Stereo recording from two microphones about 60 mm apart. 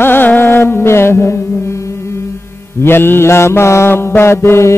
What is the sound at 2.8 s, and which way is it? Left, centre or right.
Mantra, left.